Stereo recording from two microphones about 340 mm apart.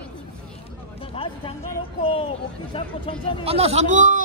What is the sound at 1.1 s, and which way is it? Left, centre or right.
Speech, centre.